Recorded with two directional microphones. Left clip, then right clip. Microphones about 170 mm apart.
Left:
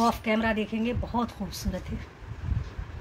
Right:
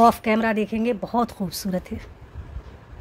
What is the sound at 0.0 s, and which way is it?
Speech, 90° right.